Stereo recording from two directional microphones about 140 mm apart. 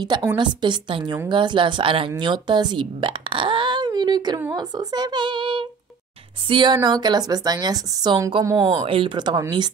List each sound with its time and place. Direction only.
0.4 s a woman's voice: 35° right (ahead or behind)